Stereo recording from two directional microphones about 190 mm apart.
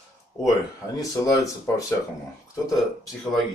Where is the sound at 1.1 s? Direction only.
20° left (ahead or behind).